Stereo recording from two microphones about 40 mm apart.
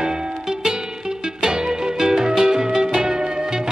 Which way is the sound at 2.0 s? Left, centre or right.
Centre.